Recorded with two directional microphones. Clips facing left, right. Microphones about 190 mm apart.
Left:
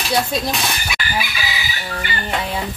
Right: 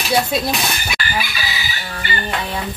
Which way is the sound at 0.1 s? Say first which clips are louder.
Right 2 dB; 5° right (ahead or behind).